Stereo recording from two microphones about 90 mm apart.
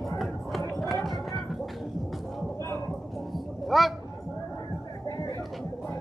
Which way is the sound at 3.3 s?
Centre (ahead or behind).